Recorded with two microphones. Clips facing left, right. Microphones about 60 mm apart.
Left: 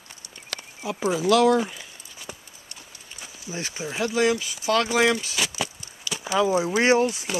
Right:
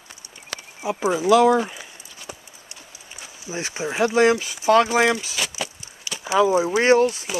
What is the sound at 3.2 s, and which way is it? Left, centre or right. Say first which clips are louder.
Speech: right 3 dB; right.